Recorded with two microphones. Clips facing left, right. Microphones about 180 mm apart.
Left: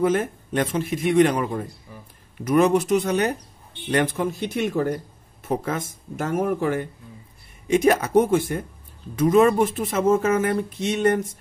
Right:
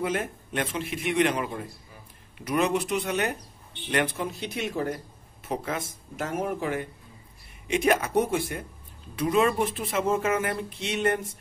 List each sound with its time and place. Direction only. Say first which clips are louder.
0.0 s speech: left 7 dB; 45° left (ahead or behind)